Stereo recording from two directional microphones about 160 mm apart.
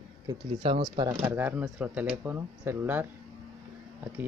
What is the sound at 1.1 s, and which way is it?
Speech, 15° right (ahead or behind).